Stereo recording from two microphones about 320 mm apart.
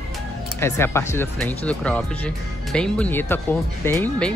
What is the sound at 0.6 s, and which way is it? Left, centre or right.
Speech, centre.